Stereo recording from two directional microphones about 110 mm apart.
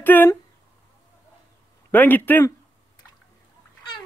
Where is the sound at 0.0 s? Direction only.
15° left (ahead or behind).